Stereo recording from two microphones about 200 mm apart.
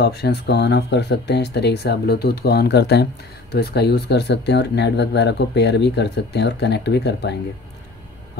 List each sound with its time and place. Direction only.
0.0 s speech: 55° left (ahead or behind)